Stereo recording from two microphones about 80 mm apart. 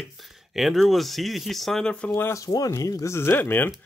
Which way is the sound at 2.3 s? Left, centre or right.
Left.